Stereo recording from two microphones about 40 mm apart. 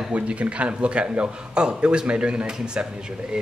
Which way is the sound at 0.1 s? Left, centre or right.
Right.